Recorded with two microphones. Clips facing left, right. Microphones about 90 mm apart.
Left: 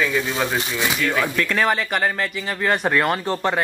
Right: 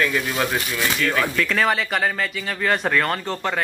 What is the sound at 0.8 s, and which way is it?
Speech, 10° left (ahead or behind).